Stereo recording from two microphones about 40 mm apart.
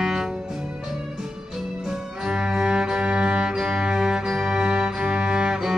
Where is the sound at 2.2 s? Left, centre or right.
Centre.